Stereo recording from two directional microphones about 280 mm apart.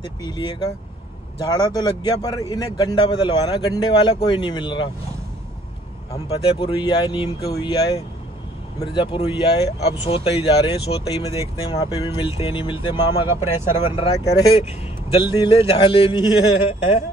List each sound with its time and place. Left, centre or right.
0.0 s a man's voice: centre
6.1 s a man's voice: left
13.3 s speech: centre
13.8 s a man's voice: centre